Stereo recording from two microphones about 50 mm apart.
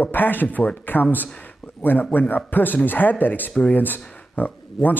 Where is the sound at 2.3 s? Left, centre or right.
Left.